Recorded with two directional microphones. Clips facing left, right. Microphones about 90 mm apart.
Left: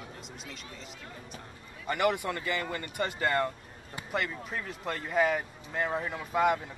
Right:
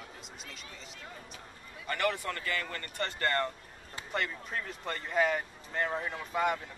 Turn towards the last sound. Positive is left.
turn(degrees=5)  # may be behind; listen again after turning